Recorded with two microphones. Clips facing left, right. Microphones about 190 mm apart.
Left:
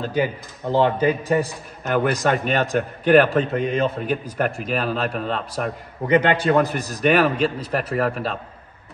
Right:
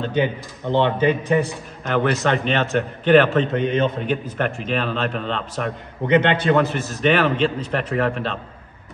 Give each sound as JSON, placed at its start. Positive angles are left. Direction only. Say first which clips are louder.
{"t": 0.0, "sound": "a man's voice", "louder": "right 1 dB", "side_deg": 5}
{"t": 6.7, "sound": "a man's voice", "louder": "right 1 dB", "side_deg": 40}
{"t": 7.1, "sound": "a man's voice", "louder": "even", "side_deg": 10}